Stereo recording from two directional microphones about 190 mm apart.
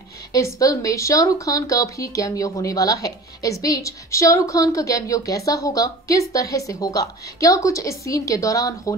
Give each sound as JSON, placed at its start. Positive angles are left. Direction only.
{"t": 0.3, "sound": "speech", "side_deg": 20}